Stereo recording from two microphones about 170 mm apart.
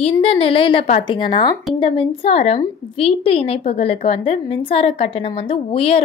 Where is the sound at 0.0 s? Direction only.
35° left (ahead or behind).